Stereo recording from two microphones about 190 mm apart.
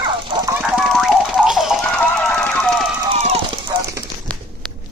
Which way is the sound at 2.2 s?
10° left (ahead or behind).